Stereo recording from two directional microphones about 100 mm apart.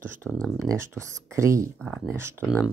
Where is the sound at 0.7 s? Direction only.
25° right (ahead or behind).